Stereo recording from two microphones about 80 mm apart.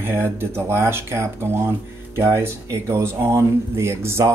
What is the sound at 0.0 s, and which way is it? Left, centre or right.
Speech, right.